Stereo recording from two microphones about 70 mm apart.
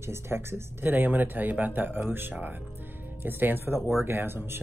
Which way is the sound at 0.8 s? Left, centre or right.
Right.